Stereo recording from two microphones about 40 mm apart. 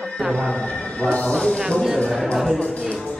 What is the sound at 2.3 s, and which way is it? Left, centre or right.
Speech, centre.